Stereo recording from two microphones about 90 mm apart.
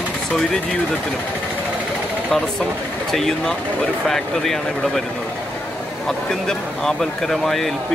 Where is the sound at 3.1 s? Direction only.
5° left (ahead or behind).